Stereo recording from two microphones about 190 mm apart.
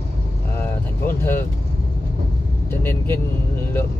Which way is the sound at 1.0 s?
10° left (ahead or behind).